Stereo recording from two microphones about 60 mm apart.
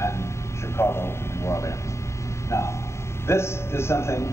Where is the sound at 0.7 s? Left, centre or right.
Left.